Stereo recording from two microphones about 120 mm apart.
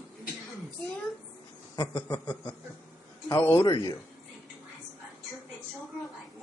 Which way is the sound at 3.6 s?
35° left (ahead or behind).